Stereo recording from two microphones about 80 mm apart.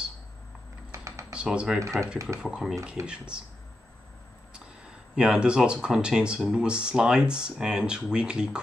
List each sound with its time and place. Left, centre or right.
0.9 s typing: right
1.3 s speech: centre
1.8 s speech: right
2.4 s speech: centre
3.0 s speech: right
5.1 s speech: centre